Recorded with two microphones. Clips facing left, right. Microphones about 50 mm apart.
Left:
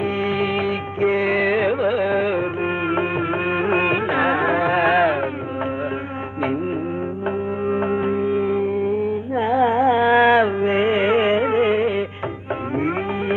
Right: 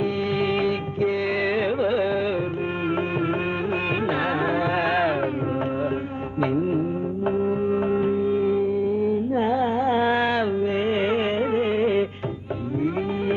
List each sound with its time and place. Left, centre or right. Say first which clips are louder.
0.0 s music: left 2 dB; left
7.2 s music: right 1 dB; left